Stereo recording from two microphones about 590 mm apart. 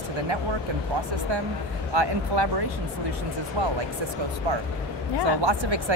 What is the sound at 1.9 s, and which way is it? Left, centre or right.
Speech, right.